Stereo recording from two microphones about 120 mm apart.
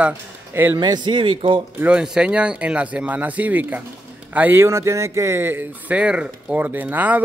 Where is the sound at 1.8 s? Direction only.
10° right (ahead or behind).